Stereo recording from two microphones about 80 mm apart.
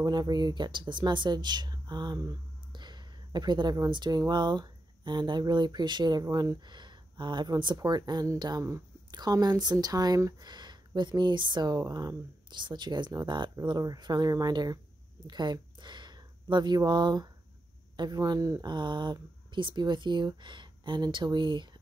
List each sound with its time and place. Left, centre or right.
0.0 s speech: right
2.7 s a sound: right
3.9 s speech: right
6.2 s speech: right
6.6 s speech: right
7.7 s speech: right
11.7 s speech: right
12.4 s speech: right
18.7 s speech: right